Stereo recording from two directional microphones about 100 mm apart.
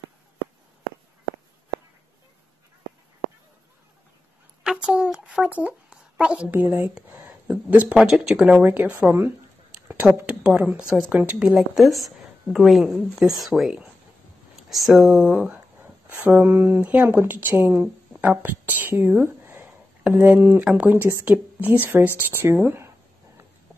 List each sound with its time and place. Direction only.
4.6 s speech: 10° right (ahead or behind)
8.6 s a woman's voice: 15° right (ahead or behind)
20.0 s speech: 10° right (ahead or behind)